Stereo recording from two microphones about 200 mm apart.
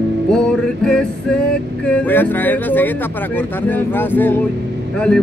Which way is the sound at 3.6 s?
10° left (ahead or behind).